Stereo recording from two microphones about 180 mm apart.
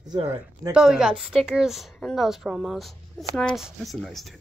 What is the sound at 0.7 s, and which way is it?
A woman's voice, 5° right (ahead or behind).